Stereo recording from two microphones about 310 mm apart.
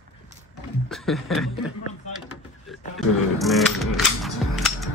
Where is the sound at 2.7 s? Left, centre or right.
Centre.